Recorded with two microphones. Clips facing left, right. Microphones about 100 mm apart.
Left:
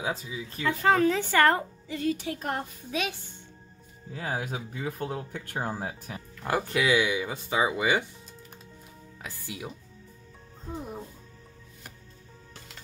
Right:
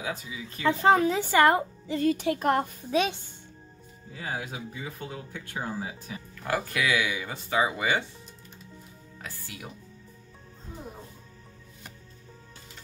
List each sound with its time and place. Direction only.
0.0 s speech: 25° left (ahead or behind)
0.6 s a woman's voice: 25° right (ahead or behind)
2.0 s speech: 60° right (ahead or behind)
2.9 s a child's voice: 30° right (ahead or behind)
4.1 s speech: 45° left (ahead or behind)
6.4 s speech: 25° left (ahead or behind)
9.2 s speech: 15° left (ahead or behind)